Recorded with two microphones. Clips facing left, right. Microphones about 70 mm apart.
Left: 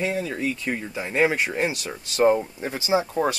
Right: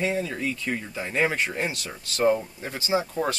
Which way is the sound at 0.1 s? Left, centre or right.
Centre.